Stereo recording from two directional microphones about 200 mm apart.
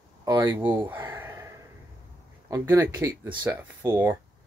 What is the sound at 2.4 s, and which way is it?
Speech, 15° right (ahead or behind).